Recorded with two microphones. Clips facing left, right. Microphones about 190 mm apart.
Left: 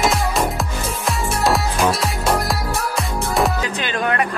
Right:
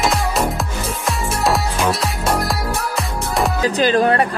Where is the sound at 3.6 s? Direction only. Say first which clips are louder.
Right 7 dB; 35° right (ahead or behind).